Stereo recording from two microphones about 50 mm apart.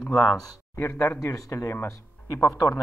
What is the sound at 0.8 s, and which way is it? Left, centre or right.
Speech, left.